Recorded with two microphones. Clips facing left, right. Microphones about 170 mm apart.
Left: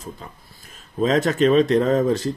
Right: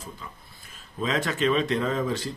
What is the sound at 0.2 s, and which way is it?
Speech, 40° left (ahead or behind).